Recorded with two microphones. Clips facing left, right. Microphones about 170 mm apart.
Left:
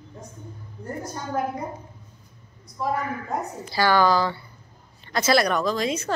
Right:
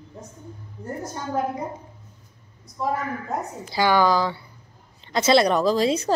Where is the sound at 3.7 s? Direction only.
15° right (ahead or behind).